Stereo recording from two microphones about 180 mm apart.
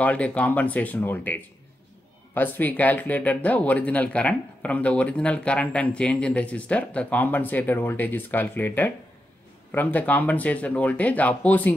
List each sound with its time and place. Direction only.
0.0 s speech: 10° left (ahead or behind)